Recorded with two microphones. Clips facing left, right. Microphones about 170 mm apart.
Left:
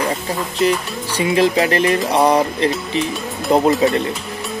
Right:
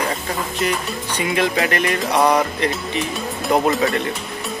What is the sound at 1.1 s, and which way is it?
Speech, 30° left (ahead or behind).